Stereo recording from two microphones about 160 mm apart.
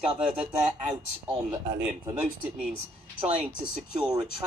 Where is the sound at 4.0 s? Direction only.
25° right (ahead or behind).